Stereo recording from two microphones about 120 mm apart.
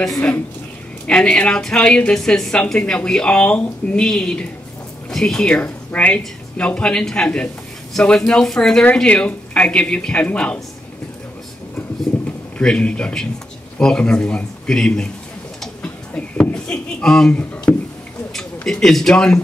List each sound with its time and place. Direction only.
0.0 s a woman's voice: 5° left (ahead or behind)
12.3 s a woman's voice: 10° left (ahead or behind)
15.6 s a sound: 10° left (ahead or behind)
18.3 s a man's voice: 5° left (ahead or behind)